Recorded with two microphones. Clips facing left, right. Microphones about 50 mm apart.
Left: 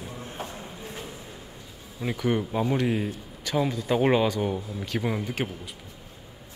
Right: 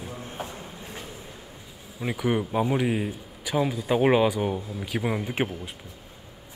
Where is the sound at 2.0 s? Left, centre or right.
Centre.